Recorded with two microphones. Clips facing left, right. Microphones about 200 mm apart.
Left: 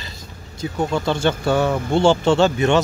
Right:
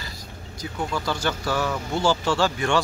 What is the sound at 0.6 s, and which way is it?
Speech, 25° left (ahead or behind).